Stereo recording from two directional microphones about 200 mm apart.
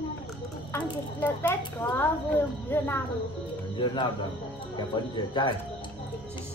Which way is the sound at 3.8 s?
20° left (ahead or behind).